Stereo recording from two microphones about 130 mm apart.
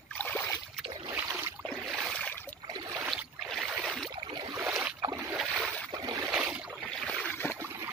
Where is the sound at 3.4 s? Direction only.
Centre (ahead or behind).